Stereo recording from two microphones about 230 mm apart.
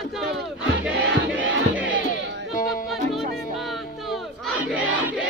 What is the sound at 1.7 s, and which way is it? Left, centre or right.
Crowd, right.